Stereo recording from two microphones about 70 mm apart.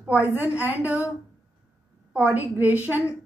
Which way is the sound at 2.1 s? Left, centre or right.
Right.